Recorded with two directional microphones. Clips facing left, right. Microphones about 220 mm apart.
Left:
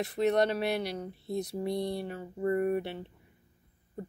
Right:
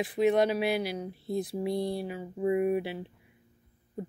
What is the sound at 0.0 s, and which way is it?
Speech, centre (ahead or behind).